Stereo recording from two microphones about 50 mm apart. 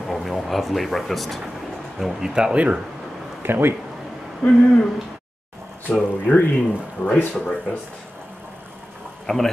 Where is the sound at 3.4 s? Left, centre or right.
Right.